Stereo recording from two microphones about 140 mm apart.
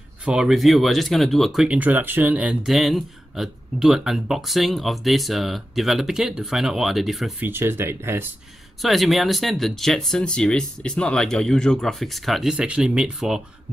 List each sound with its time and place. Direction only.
0.2 s speech: 5° right (ahead or behind)
7.4 s speech: 15° right (ahead or behind)
8.8 s speech: centre (ahead or behind)